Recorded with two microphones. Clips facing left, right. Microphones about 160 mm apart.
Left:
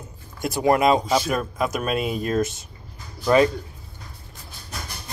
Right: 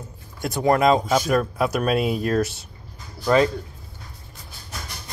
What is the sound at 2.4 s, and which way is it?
Speech, 65° right (ahead or behind).